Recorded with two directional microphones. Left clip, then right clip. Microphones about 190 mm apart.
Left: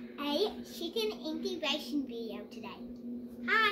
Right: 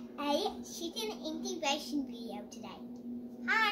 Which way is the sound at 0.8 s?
15° right (ahead or behind).